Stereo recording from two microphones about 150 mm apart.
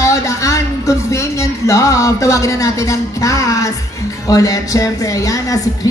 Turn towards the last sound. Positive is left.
turn(degrees=25)  # may be behind; listen again after turning